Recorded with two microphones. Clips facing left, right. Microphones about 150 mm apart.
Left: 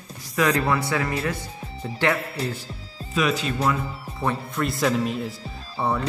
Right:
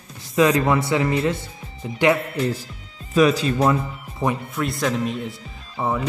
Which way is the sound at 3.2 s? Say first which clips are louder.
Right 7 dB; 35° right (ahead or behind).